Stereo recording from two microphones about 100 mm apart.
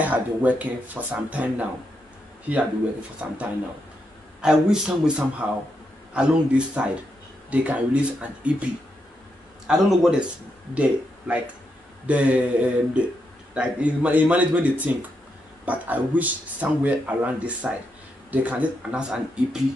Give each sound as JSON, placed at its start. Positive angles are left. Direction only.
{"t": 0.0, "sound": "speech", "side_deg": -15}
{"t": 3.2, "sound": "speech", "side_deg": -15}
{"t": 4.4, "sound": "speech", "side_deg": -5}
{"t": 9.7, "sound": "a man's voice", "side_deg": -5}